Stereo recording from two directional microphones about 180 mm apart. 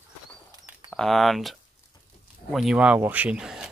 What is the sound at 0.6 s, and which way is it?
Bird, centre (ahead or behind).